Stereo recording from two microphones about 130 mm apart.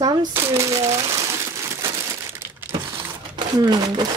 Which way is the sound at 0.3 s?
20° right (ahead or behind).